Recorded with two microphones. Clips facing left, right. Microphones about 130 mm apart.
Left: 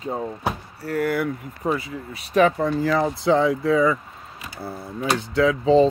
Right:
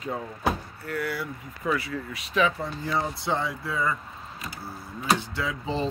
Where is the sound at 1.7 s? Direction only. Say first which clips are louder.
Left 2 dB; 25° left (ahead or behind).